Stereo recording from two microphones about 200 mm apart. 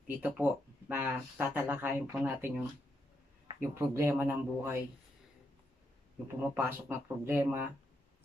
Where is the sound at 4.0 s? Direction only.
10° right (ahead or behind).